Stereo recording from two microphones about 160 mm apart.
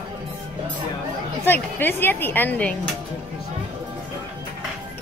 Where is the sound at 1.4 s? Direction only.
15° left (ahead or behind).